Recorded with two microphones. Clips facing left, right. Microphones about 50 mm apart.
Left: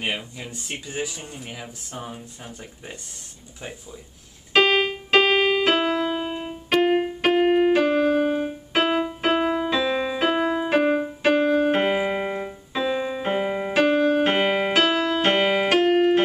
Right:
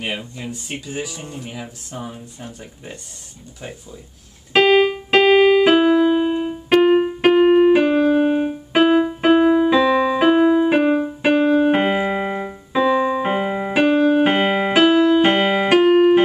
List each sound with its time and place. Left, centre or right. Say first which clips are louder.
0.0 s speech: right 2 dB; centre
4.5 s keyboard: right 5 dB; centre
12.3 s keyboard: right 4 dB; right
13.0 s music: right 5 dB; centre